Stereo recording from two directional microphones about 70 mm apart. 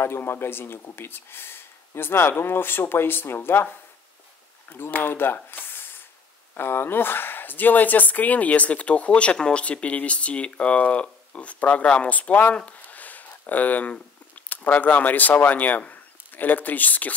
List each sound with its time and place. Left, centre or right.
0.0 s speech: left
4.7 s speech: left